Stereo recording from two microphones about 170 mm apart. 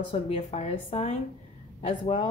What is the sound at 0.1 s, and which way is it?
Speech, 40° left (ahead or behind).